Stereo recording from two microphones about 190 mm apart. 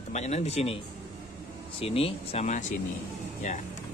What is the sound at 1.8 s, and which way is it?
Speech, 30° left (ahead or behind).